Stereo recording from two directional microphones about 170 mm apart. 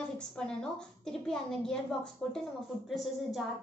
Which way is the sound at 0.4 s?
5° left (ahead or behind).